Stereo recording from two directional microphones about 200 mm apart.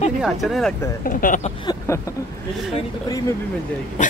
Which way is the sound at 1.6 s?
20° left (ahead or behind).